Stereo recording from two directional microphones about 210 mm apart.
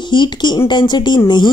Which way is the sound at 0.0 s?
20° left (ahead or behind).